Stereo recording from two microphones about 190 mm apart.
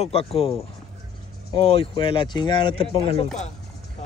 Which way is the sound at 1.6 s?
30° left (ahead or behind).